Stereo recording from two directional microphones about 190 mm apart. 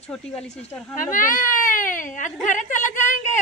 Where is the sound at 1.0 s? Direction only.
45° left (ahead or behind).